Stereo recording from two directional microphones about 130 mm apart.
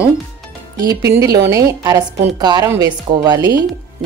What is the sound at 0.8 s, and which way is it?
A woman's voice, 25° right (ahead or behind).